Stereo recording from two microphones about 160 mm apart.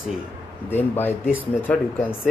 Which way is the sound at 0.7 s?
15° left (ahead or behind).